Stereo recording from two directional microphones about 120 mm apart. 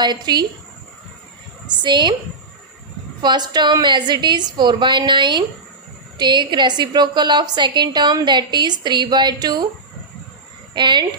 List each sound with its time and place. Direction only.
0.0 s a woman's voice: 35° right (ahead or behind)
1.7 s a woman's voice: 40° right (ahead or behind)
3.2 s a woman's voice: 35° right (ahead or behind)
10.7 s speech: 40° right (ahead or behind)